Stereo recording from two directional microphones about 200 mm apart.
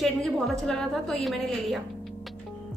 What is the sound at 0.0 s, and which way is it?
A woman's voice, centre (ahead or behind).